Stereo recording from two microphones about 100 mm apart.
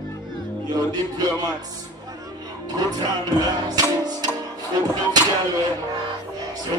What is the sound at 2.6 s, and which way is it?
Music, 40° right (ahead or behind).